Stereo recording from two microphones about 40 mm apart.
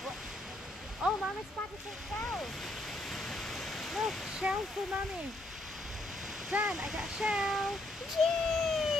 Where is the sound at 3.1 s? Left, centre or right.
Centre.